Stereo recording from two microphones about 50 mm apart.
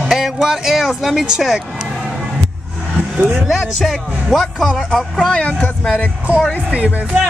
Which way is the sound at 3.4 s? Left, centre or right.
Centre.